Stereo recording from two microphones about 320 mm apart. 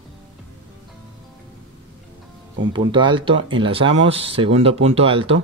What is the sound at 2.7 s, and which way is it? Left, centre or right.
Speech, centre.